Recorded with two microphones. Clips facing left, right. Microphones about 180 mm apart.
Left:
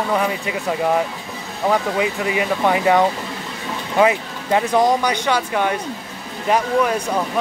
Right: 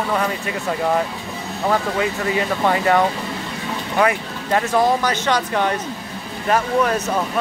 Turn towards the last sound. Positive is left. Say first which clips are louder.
# even
turn(degrees=10)  # may be behind; listen again after turning